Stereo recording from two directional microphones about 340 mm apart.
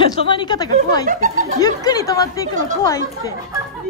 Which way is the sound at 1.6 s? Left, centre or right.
Centre.